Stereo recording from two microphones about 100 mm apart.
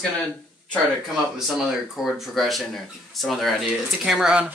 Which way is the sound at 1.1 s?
5° right (ahead or behind).